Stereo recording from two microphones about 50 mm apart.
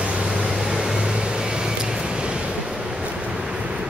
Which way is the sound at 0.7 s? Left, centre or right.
Centre.